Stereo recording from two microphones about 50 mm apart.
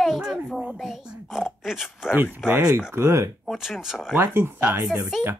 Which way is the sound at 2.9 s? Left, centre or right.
Right.